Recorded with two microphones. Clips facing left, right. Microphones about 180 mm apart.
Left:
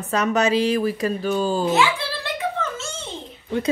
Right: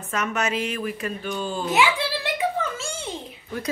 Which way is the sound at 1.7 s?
15° right (ahead or behind).